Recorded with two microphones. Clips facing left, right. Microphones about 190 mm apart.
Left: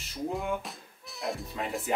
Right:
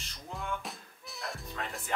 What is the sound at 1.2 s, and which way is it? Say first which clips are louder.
Speech: left 6 dB; centre (ahead or behind).